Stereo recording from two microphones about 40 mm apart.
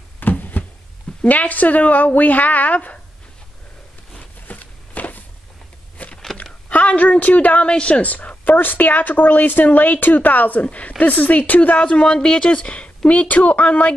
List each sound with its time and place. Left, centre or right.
0.2 s a sound: left
1.2 s a woman's voice: left
4.5 s walk: left
6.0 s a sound: left
6.7 s a woman's voice: left
8.0 s a woman's voice: left
11.8 s speech: left